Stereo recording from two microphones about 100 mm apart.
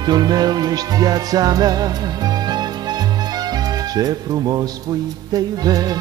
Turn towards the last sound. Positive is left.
turn(degrees=-40)  # may be behind; listen again after turning